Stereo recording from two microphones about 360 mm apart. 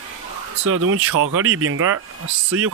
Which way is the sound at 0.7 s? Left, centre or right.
Right.